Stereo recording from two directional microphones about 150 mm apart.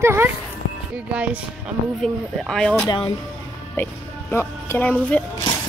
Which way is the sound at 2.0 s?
5° left (ahead or behind).